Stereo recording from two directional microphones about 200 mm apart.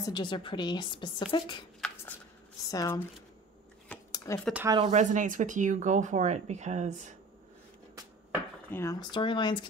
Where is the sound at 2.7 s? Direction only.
15° left (ahead or behind).